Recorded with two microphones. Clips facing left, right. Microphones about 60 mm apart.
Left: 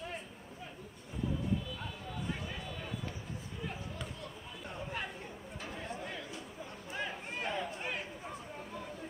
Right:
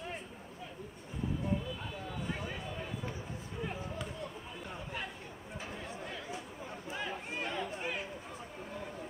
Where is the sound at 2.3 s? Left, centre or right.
Centre.